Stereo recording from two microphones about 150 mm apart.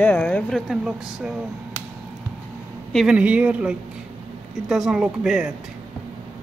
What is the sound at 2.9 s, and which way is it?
Speech, 5° right (ahead or behind).